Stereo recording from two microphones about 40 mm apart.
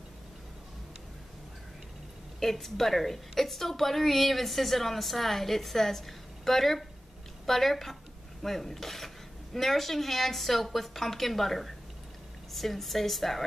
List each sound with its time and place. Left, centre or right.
2.4 s a woman's voice: centre